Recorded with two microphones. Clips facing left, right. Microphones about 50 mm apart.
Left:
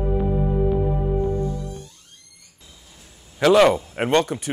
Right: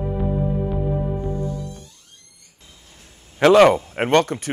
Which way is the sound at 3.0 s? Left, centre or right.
Right.